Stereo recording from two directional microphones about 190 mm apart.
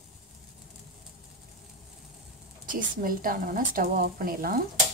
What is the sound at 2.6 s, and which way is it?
A woman's voice, 45° right (ahead or behind).